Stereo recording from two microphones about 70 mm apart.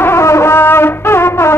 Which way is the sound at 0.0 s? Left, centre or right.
Left.